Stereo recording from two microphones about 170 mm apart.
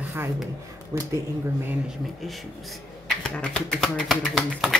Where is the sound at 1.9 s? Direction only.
Centre (ahead or behind).